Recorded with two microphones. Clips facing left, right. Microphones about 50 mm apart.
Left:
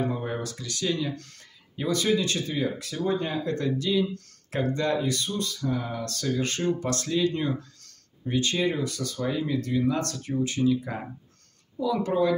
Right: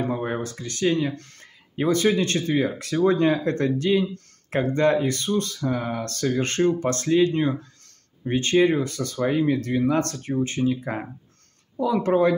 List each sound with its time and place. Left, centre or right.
0.0 s speech: right
11.7 s speech: right